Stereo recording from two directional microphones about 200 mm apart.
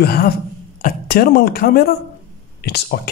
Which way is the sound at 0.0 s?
50° left (ahead or behind).